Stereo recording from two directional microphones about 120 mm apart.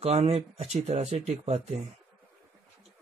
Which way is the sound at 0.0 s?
60° right (ahead or behind).